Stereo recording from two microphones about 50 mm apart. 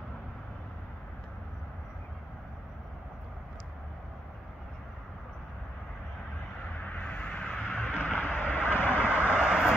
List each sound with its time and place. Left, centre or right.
6.8 s vehicle: left
7.4 s vehicle: centre
8.0 s vehicle: left
9.4 s vehicle: centre